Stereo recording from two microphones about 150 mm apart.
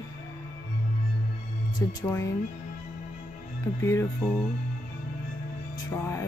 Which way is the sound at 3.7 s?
20° left (ahead or behind).